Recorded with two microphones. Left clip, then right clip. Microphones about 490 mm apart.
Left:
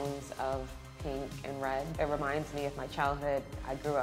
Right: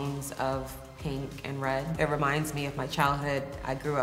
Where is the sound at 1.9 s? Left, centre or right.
Left.